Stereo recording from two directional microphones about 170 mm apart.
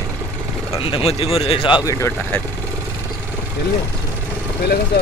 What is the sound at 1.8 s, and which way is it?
Speech, 15° left (ahead or behind).